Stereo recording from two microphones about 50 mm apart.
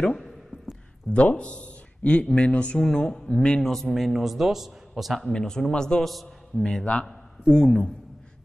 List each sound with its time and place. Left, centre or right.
1.1 s speech: left
2.8 s a man's voice: centre
5.3 s speech: centre